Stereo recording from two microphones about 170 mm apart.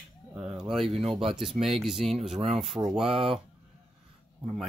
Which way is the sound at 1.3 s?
Centre (ahead or behind).